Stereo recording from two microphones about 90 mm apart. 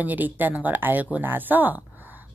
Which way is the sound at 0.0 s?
20° right (ahead or behind).